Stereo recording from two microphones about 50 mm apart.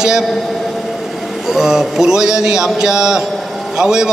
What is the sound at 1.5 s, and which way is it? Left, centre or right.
A man's voice, centre.